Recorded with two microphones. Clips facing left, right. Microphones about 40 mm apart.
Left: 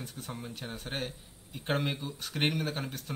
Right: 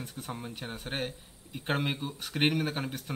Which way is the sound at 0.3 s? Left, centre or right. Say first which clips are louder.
Right 2 dB; centre.